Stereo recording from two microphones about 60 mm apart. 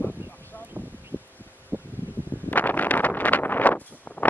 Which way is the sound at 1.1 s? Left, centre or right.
Left.